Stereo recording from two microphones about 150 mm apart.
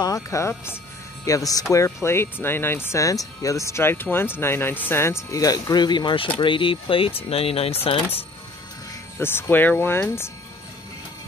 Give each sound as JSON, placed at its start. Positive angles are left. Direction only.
{"t": 0.0, "sound": "speech", "side_deg": 20}
{"t": 9.2, "sound": "speech", "side_deg": 15}